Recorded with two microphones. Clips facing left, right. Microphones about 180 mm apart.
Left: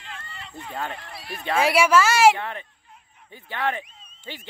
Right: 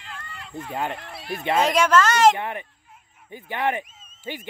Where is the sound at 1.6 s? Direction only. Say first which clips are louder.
Left 1 dB; 10° left (ahead or behind).